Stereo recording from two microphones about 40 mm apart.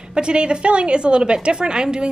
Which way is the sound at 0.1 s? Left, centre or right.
Right.